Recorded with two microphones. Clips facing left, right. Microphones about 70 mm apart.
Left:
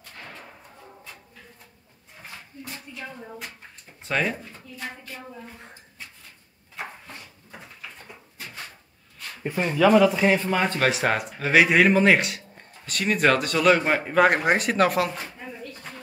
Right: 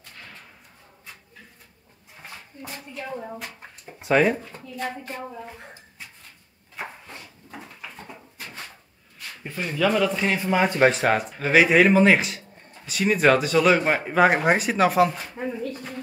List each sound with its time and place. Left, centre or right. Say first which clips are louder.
4.0 s speech: right 7 dB; centre
4.5 s a woman's voice: right 6 dB; right
8.1 s a sound: right 2 dB; centre
9.8 s speech: left 4 dB; centre
10.4 s speech: right 4 dB; centre
10.9 s speech: right 2 dB; centre